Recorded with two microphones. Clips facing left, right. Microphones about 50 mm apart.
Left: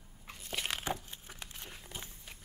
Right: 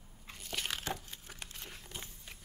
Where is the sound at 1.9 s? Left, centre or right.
Centre.